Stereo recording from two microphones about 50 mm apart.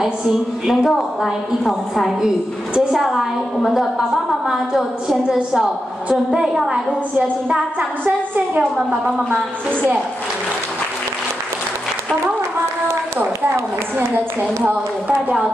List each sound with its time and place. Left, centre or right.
0.7 s a woman's voice: centre
2.9 s a woman's voice: centre
6.7 s a woman's voice: right
13.9 s a woman's voice: right